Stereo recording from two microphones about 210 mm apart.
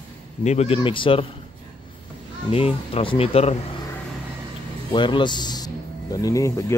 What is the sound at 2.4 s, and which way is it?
Speech, 25° left (ahead or behind).